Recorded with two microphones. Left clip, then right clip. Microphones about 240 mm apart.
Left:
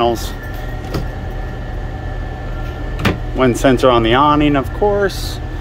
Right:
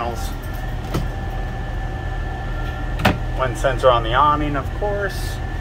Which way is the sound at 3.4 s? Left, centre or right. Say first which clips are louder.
Left 6 dB; left.